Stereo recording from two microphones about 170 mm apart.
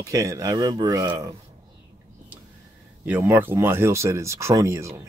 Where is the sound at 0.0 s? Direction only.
20° right (ahead or behind).